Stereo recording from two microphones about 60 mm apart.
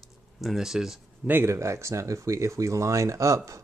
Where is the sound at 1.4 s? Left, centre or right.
Right.